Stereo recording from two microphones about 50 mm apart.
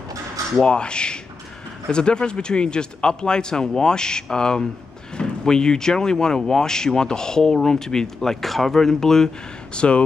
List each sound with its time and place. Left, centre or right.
0.6 s speech: centre
9.8 s speech: left